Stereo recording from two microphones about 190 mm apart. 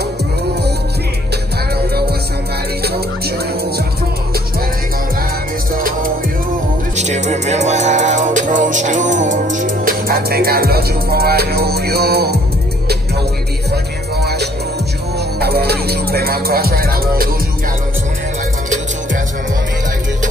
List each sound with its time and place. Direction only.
2.8 s music: 55° right (ahead or behind)
5.8 s music: 50° right (ahead or behind)
7.0 s music: 40° right (ahead or behind); by 12.4 s 60° right (ahead or behind)
14.2 s music: 60° right (ahead or behind)